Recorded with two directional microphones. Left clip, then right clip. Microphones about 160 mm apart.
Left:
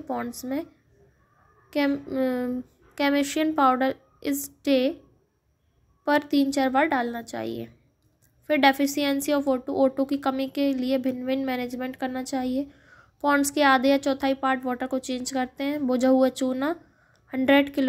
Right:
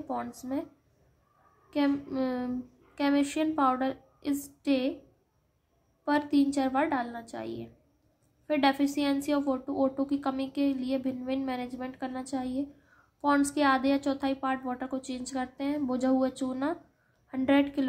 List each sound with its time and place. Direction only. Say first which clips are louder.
0.1 s speech: left 4 dB; 15° left (ahead or behind)
1.7 s speech: left 4 dB; 20° left (ahead or behind)
6.0 s speech: left 4 dB; 25° left (ahead or behind)